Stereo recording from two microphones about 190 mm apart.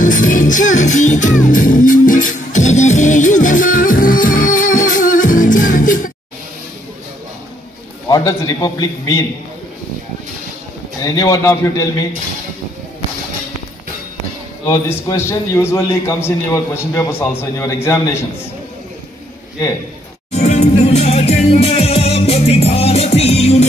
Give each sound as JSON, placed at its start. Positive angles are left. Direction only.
{"t": 0.0, "sound": "music", "side_deg": 45}
{"t": 8.1, "sound": "a man's voice", "side_deg": 20}
{"t": 11.1, "sound": "a man's voice", "side_deg": 20}
{"t": 14.7, "sound": "a man's voice", "side_deg": 15}
{"t": 20.2, "sound": "music", "side_deg": 35}